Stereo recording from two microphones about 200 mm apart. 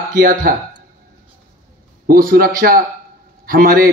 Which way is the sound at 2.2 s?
45° right (ahead or behind).